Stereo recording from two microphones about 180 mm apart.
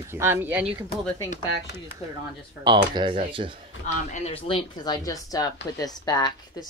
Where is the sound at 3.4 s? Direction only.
40° right (ahead or behind).